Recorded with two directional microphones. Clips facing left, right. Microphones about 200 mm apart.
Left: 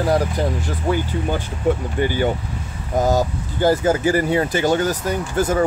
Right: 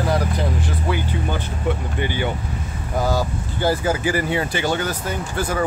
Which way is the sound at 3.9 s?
40° left (ahead or behind).